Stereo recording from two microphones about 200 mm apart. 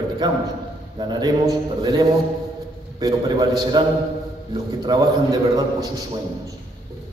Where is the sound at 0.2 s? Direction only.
20° right (ahead or behind).